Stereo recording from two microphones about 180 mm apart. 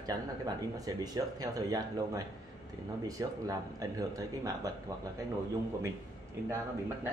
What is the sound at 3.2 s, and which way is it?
Speech, 20° right (ahead or behind).